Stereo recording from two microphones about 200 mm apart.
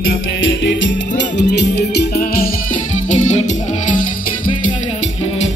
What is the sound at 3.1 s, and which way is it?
Music, 35° left (ahead or behind).